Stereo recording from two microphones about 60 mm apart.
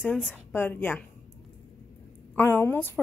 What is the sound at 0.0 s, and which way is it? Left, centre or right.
Speech, left.